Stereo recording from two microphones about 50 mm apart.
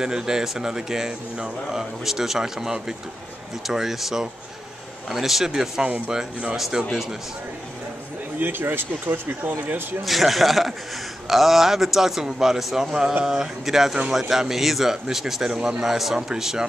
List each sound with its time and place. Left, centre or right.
0.0 s speech: centre
8.4 s speech: right
10.0 s a man's voice: centre